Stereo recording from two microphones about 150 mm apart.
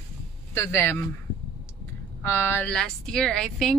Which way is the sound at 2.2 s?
15° left (ahead or behind).